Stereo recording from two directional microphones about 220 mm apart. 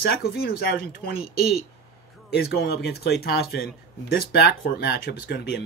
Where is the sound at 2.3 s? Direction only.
45° left (ahead or behind).